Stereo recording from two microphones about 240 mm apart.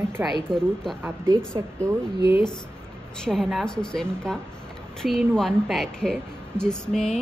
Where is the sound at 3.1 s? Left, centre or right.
Centre.